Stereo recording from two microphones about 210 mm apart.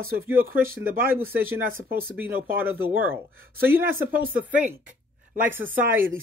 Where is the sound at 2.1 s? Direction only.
10° right (ahead or behind).